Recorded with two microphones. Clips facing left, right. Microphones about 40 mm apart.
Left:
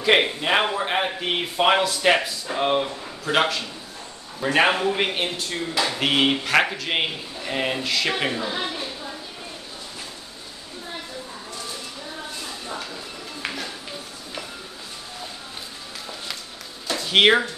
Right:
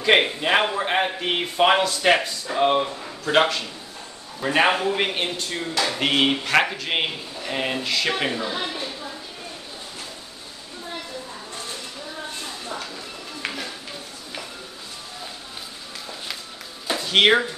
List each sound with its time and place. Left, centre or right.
0.0 s a man's voice: centre
13.4 s music: centre
17.0 s speech: centre